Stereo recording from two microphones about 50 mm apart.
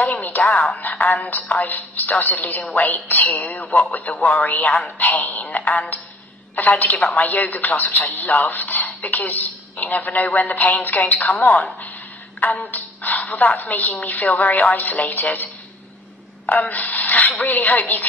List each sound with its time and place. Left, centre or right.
0.0 s a woman's voice: left